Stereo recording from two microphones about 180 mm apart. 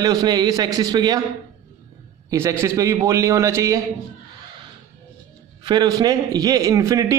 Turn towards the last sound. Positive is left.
turn(degrees=-20)  # may be behind; listen again after turning